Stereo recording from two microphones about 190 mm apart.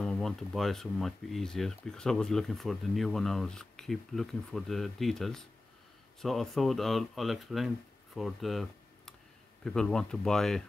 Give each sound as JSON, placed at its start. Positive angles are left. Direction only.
{"t": 0.0, "sound": "speech", "side_deg": 0}